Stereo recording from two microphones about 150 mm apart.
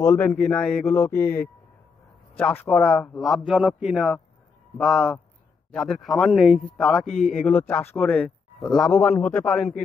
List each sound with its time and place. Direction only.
0.0 s a man's voice: 20° left (ahead or behind)
0.5 s a man's voice: 5° left (ahead or behind)
0.9 s a man's voice: 15° left (ahead or behind)